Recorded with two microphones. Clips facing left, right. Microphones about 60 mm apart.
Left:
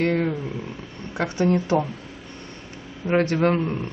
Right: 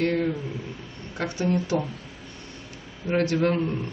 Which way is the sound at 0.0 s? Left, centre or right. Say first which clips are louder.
Left 2 dB; left.